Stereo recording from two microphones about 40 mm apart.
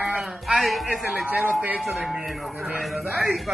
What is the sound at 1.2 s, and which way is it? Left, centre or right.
Speech, right.